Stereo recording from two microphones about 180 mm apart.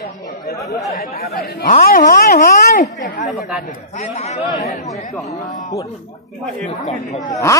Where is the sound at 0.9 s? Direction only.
60° left (ahead or behind); by 4.5 s 35° left (ahead or behind).